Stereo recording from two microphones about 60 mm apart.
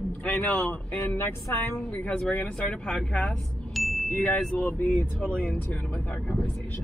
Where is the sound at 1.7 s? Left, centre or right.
Left.